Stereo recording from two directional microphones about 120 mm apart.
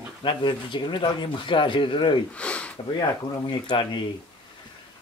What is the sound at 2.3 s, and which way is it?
Sniff, 10° left (ahead or behind).